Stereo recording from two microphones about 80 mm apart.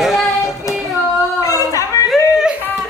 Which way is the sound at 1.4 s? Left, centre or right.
Left.